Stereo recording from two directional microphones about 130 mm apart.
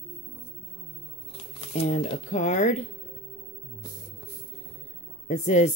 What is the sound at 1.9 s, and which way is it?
Speech, 55° left (ahead or behind).